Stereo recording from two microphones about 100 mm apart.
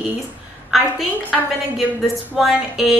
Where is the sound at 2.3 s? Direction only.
5° right (ahead or behind).